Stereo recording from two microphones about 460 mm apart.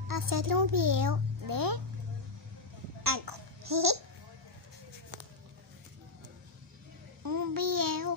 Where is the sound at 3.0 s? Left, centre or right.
Right.